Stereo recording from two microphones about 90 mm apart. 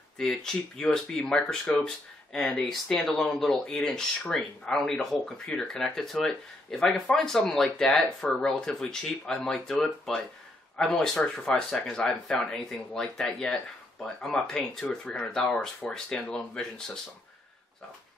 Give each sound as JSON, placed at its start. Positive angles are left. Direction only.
{"t": 0.2, "sound": "speech", "side_deg": 5}